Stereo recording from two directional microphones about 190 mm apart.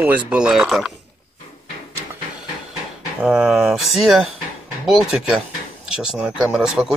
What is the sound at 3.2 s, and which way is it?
Speech, centre (ahead or behind).